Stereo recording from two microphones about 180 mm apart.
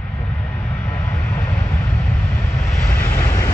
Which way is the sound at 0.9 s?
15° left (ahead or behind).